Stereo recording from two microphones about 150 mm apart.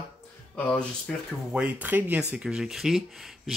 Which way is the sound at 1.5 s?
10° right (ahead or behind).